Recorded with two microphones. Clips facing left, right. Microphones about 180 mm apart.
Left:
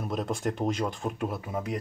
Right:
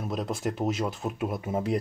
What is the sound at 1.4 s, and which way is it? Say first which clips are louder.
Speech: right 5 dB; 30° right (ahead or behind).